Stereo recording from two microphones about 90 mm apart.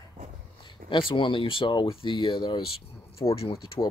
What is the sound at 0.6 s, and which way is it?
Speech, 75° left (ahead or behind).